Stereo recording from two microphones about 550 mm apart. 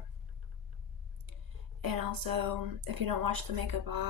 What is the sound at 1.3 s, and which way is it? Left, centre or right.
Speech, right.